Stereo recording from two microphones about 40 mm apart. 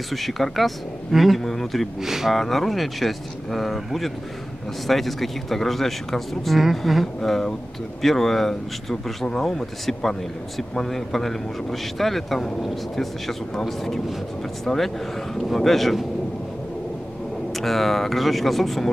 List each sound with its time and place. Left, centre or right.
0.1 s speech: centre
2.0 s speech: centre
2.3 s speech: centre
7.2 s speech: centre
17.6 s speech: centre